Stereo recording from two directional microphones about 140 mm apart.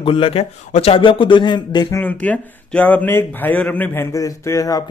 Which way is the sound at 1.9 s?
10° left (ahead or behind).